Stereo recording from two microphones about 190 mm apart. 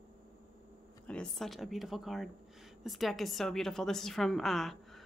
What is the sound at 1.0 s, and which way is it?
A woman's voice, 5° left (ahead or behind).